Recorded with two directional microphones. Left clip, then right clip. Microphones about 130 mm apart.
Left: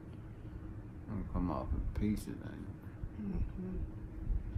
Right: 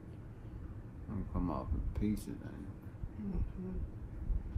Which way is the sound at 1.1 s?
20° left (ahead or behind).